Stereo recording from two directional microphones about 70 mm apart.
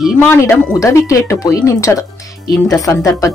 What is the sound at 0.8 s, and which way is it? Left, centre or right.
Speech, left.